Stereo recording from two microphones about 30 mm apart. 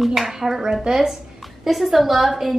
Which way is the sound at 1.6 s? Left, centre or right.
Centre.